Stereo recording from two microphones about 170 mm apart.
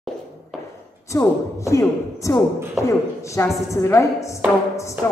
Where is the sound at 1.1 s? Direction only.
15° left (ahead or behind).